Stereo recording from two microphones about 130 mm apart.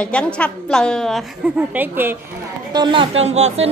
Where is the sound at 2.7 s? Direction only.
35° right (ahead or behind); by 3.7 s 55° right (ahead or behind).